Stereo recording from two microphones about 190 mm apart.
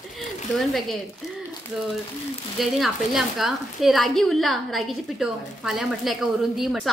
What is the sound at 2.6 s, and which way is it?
A woman's voice, centre (ahead or behind).